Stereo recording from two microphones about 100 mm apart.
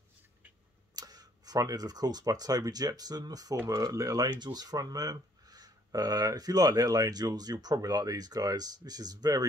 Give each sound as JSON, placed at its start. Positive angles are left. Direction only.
{"t": 0.9, "sound": "speech", "side_deg": -40}